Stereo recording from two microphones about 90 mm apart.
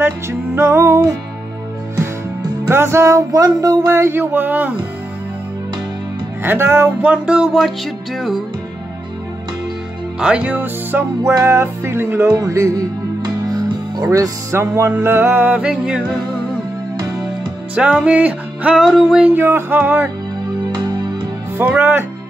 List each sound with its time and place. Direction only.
0.0 s speech: 25° right (ahead or behind)
2.7 s speech: 30° right (ahead or behind)
6.4 s speech: 25° right (ahead or behind)
7.1 s music: 10° right (ahead or behind)
10.2 s speech: 15° right (ahead or behind)
12.4 s music: 35° right (ahead or behind)
13.2 s music: 45° right (ahead or behind); by 16.0 s 10° right (ahead or behind)
17.7 s music: 10° right (ahead or behind)
18.8 s music: centre (ahead or behind)
19.2 s speech: 25° right (ahead or behind)
21.6 s speech: 20° right (ahead or behind)